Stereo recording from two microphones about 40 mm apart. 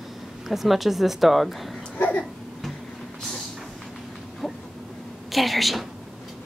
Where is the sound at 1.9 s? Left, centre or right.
Left.